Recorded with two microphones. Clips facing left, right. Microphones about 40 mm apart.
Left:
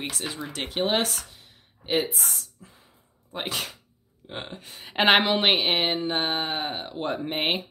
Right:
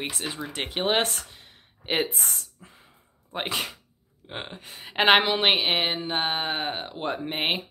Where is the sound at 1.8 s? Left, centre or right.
Right.